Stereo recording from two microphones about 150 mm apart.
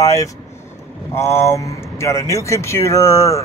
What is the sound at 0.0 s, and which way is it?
A man's voice, 20° left (ahead or behind).